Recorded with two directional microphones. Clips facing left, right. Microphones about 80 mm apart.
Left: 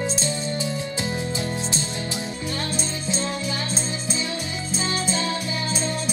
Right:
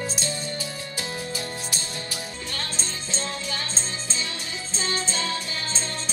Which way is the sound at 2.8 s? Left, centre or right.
Centre.